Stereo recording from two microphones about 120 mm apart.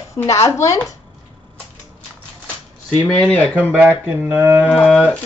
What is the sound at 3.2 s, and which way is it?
Speech, 10° left (ahead or behind).